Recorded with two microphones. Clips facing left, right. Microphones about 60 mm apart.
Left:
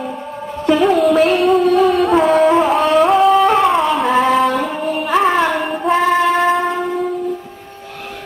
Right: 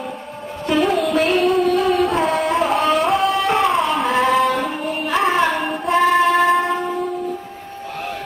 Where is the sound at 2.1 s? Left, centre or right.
Centre.